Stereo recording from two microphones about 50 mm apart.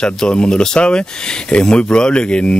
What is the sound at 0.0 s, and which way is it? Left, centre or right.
Speech, centre.